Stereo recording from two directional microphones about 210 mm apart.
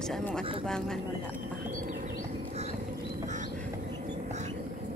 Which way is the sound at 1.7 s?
40° right (ahead or behind).